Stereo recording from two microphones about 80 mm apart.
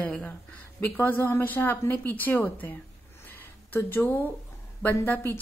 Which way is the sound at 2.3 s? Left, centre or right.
Left.